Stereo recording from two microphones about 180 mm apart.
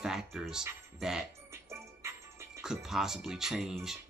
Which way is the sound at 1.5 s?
15° right (ahead or behind).